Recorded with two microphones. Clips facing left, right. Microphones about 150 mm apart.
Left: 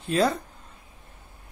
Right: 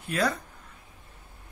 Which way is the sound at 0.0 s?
25° left (ahead or behind).